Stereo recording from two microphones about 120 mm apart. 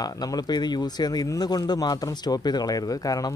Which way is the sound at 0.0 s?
35° left (ahead or behind).